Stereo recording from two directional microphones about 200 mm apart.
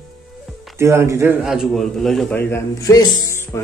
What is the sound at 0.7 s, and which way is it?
A man's voice, 15° right (ahead or behind).